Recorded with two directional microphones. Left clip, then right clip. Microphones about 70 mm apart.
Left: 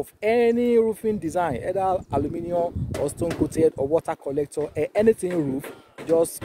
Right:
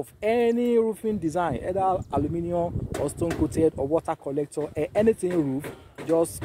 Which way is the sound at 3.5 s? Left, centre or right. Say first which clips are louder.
Left 3 dB; left.